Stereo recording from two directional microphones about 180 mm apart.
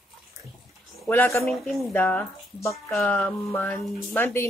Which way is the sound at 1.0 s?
10° left (ahead or behind).